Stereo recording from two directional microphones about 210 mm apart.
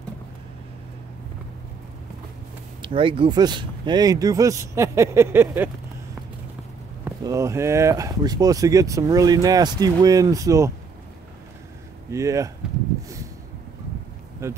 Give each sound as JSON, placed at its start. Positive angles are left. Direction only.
{"t": 2.8, "sound": "speech", "side_deg": -25}
{"t": 7.1, "sound": "speech", "side_deg": -15}
{"t": 12.1, "sound": "speech", "side_deg": -15}
{"t": 14.4, "sound": "speech", "side_deg": -15}